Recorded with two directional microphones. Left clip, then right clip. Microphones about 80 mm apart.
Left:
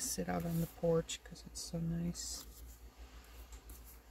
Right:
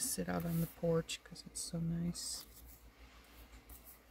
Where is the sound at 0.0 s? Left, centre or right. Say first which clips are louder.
Left 1 dB; right.